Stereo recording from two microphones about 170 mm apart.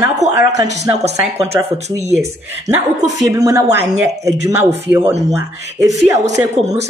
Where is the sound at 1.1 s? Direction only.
40° right (ahead or behind).